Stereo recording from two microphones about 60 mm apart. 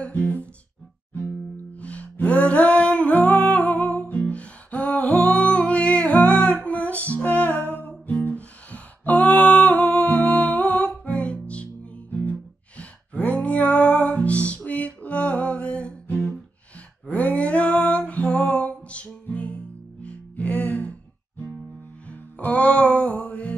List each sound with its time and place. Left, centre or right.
0.0 s music: left
1.8 s music: left
22.4 s music: left